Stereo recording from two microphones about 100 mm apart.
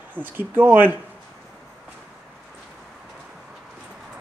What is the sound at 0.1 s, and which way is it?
Speech, 20° right (ahead or behind).